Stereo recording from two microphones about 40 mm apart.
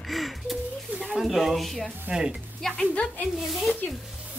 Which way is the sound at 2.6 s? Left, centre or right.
Centre.